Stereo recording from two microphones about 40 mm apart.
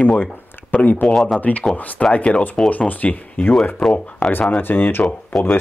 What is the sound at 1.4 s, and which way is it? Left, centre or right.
Speech, left.